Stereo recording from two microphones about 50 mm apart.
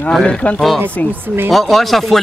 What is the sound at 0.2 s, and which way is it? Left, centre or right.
Speech, left.